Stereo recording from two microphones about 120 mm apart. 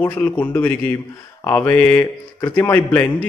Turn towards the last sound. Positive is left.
turn(degrees=15)  # may be behind; listen again after turning